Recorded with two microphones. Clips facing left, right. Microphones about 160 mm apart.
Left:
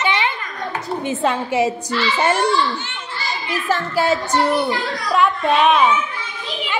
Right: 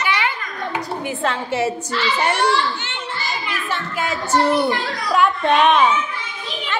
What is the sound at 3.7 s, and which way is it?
Speech, 35° left (ahead or behind).